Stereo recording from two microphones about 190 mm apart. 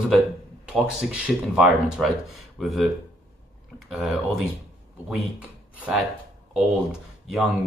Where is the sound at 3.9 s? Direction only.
Centre (ahead or behind).